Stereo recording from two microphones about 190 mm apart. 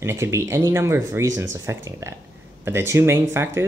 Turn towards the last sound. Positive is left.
turn(degrees=-15)  # may be behind; listen again after turning